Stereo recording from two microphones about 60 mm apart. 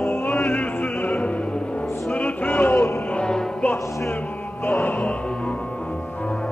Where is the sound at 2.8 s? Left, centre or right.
Left.